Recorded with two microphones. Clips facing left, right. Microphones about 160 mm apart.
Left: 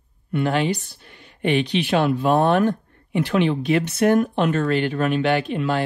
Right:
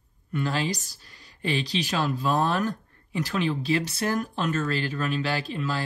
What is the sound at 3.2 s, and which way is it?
Speech, 40° right (ahead or behind).